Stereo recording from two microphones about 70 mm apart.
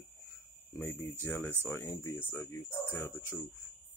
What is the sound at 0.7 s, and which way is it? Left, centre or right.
Speech, left.